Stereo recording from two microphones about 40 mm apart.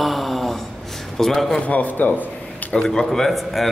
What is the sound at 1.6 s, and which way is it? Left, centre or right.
A man's voice, left.